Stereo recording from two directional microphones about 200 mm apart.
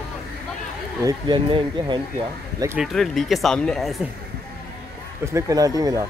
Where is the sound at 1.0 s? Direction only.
25° right (ahead or behind).